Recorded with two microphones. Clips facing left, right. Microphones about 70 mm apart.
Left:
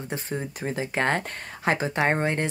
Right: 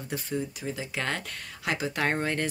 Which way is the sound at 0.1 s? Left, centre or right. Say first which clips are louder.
Even; left.